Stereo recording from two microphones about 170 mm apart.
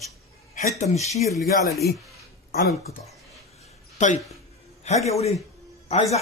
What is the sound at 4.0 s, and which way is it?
Speech, 45° left (ahead or behind).